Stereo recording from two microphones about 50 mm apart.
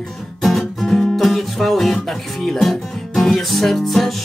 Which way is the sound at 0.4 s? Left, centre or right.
Centre.